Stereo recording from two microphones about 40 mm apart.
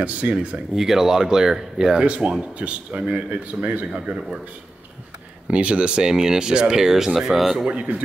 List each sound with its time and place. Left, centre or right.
0.0 s speech: right
0.7 s speech: centre
2.0 s speech: right
5.5 s speech: right; by 7.6 s centre
7.6 s speech: right